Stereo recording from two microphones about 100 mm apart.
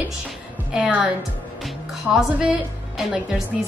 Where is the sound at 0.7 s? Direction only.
10° right (ahead or behind).